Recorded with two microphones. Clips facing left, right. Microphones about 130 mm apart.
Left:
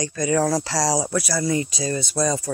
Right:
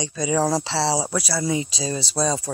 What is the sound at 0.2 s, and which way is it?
Speech, 10° right (ahead or behind).